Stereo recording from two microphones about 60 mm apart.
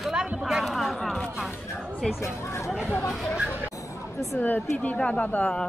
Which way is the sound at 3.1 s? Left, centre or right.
Centre.